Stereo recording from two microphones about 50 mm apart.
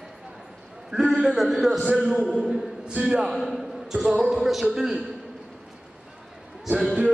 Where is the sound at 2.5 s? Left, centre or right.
Centre.